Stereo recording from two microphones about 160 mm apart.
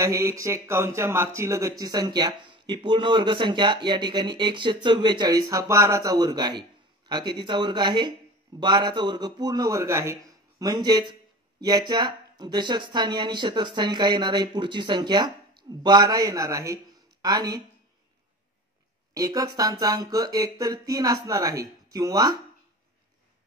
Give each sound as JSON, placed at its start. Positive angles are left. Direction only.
{"t": 0.0, "sound": "speech", "side_deg": -20}
{"t": 19.1, "sound": "speech", "side_deg": -20}